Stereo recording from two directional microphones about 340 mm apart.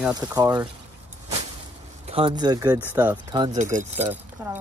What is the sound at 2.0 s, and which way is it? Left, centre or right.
Speech, centre.